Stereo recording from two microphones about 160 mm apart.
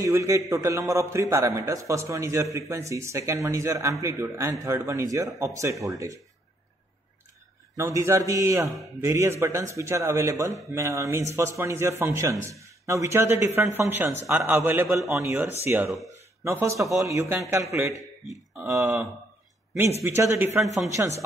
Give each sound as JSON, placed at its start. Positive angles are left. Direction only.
{"t": 0.0, "sound": "a man's voice", "side_deg": -20}
{"t": 7.7, "sound": "a man's voice", "side_deg": -20}
{"t": 20.0, "sound": "a man's voice", "side_deg": -15}